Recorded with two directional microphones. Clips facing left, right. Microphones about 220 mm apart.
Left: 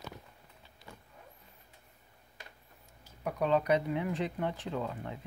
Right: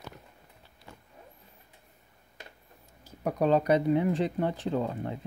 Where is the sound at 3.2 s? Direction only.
40° right (ahead or behind).